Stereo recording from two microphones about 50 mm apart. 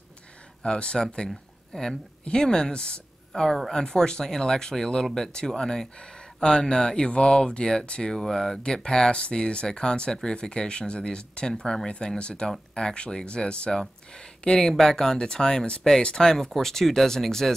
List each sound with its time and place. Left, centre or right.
0.6 s speech: centre
3.4 s speech: centre
3.7 s speech: centre